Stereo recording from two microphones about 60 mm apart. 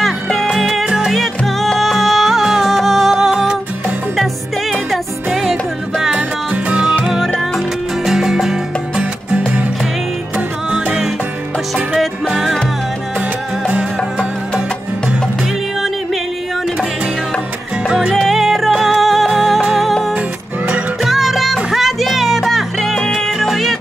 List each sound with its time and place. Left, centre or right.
0.0 s music: centre
0.7 s music: centre
4.9 s music: centre
6.5 s music: centre
7.3 s music: centre
12.0 s music: centre
18.1 s music: centre